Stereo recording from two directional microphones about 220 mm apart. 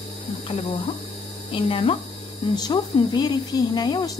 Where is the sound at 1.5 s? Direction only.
25° left (ahead or behind).